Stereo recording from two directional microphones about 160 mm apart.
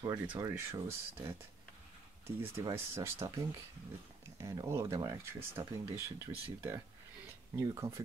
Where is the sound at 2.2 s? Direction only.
15° right (ahead or behind).